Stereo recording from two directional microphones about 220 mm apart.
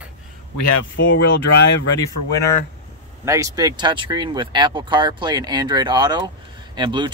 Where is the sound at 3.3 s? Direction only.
15° right (ahead or behind).